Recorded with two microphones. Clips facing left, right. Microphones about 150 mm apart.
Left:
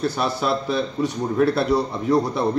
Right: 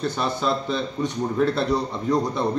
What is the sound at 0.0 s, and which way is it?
A man's voice, 10° left (ahead or behind).